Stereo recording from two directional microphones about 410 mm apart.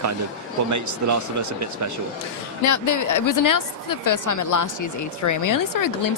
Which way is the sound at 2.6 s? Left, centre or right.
Left.